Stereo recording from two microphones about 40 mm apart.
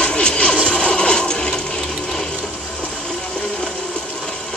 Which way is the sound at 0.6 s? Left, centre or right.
Left.